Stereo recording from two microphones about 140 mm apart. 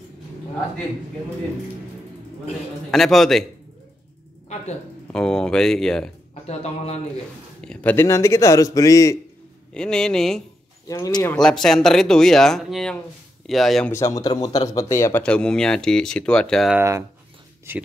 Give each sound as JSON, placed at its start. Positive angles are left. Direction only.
{"t": 2.9, "sound": "speech", "side_deg": 0}
{"t": 5.1, "sound": "speech", "side_deg": 5}
{"t": 6.4, "sound": "a man's voice", "side_deg": 50}
{"t": 7.6, "sound": "speech", "side_deg": 10}
{"t": 9.8, "sound": "speech", "side_deg": 5}
{"t": 10.9, "sound": "speech", "side_deg": 25}
{"t": 11.3, "sound": "speech", "side_deg": 5}
{"t": 13.8, "sound": "speech", "side_deg": 20}
{"t": 15.2, "sound": "speech", "side_deg": 5}
{"t": 16.7, "sound": "speech", "side_deg": -20}